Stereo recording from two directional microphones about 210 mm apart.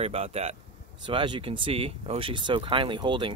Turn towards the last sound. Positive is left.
turn(degrees=-20)  # may be behind; listen again after turning